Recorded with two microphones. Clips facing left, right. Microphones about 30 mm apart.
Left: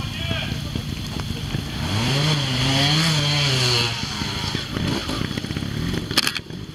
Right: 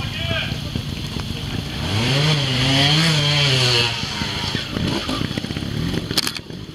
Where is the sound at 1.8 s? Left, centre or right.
Centre.